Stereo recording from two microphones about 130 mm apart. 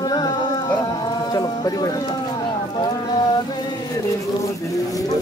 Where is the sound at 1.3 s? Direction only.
30° left (ahead or behind).